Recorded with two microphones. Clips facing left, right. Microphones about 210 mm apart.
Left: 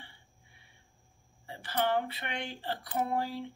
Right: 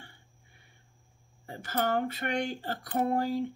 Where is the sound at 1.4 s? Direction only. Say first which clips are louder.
Right 1 dB; 45° right (ahead or behind).